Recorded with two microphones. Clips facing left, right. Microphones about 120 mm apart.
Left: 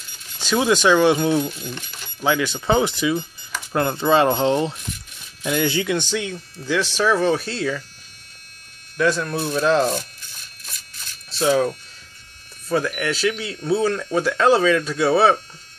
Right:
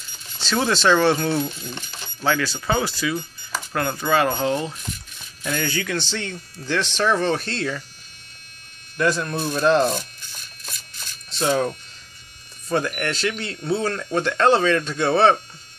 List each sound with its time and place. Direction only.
0.4 s speech: 15° left (ahead or behind)
8.9 s speech: centre (ahead or behind)
11.2 s speech: 5° left (ahead or behind)